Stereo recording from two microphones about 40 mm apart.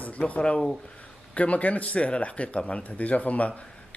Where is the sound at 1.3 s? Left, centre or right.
Left.